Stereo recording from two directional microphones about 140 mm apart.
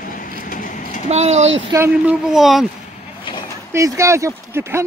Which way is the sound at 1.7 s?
25° right (ahead or behind).